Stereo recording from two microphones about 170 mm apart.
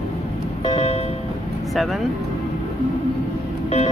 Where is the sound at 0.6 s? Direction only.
35° left (ahead or behind).